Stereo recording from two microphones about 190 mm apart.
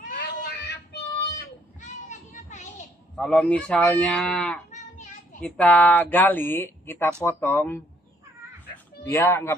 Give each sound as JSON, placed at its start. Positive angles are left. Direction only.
{"t": 0.3, "sound": "child singing", "side_deg": 60}
{"t": 1.8, "sound": "children playing", "side_deg": 40}
{"t": 3.2, "sound": "speech", "side_deg": 5}
{"t": 9.0, "sound": "speech", "side_deg": 15}